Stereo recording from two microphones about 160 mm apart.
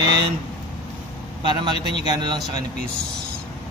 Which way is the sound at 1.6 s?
30° right (ahead or behind).